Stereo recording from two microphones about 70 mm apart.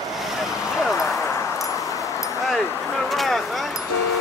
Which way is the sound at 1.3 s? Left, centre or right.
Left.